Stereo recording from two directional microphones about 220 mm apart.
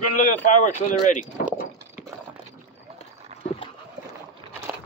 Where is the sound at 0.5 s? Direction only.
35° left (ahead or behind).